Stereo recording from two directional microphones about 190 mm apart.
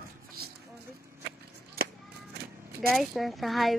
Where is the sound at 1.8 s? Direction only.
55° right (ahead or behind).